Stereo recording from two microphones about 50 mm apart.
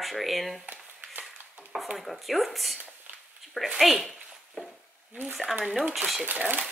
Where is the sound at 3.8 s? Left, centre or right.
Centre.